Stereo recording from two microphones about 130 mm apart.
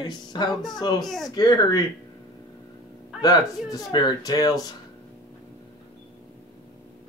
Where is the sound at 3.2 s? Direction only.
30° left (ahead or behind).